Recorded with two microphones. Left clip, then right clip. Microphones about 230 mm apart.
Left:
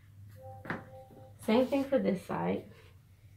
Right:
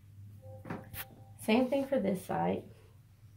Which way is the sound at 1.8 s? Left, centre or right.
Right.